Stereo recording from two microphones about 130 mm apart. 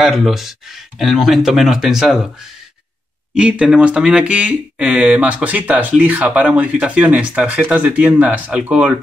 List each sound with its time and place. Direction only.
0.0 s speech: centre (ahead or behind)
3.3 s speech: 10° right (ahead or behind)